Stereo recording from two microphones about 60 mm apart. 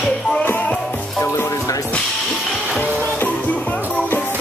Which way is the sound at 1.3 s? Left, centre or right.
Left.